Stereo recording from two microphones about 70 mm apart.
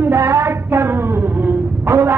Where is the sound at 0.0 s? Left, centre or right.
Right.